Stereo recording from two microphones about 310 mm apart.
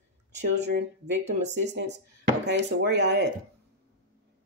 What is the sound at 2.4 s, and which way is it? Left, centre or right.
Speech, right.